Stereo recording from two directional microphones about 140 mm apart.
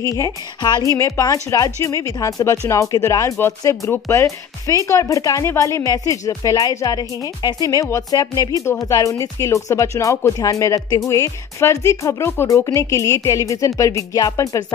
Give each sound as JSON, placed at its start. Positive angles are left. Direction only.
{"t": 0.0, "sound": "speech", "side_deg": 25}